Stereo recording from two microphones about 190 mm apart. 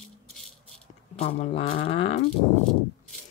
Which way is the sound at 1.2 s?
30° left (ahead or behind).